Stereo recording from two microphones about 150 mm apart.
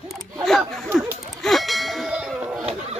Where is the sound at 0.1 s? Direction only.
Centre (ahead or behind).